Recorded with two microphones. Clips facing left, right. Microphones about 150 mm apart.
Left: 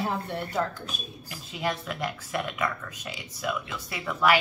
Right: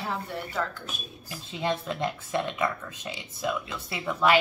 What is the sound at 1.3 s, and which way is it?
Speech, 25° right (ahead or behind).